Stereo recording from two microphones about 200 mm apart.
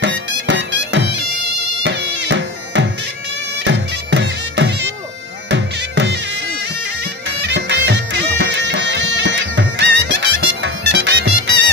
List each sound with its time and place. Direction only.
0.0 s bagpipes: 65° right (ahead or behind)
3.6 s music: 60° right (ahead or behind)
5.5 s bagpipes: 60° right (ahead or behind)
7.2 s music: 60° right (ahead or behind)